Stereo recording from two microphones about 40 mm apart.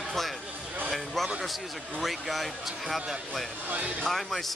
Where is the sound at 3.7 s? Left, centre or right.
Right.